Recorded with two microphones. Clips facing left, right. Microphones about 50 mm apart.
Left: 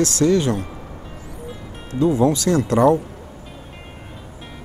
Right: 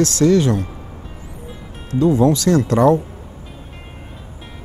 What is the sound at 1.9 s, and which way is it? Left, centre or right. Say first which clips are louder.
Speech: right 2 dB; left.